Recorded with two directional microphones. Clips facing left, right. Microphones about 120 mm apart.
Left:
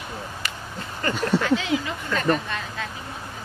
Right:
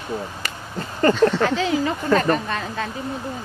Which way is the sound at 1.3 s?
40° right (ahead or behind).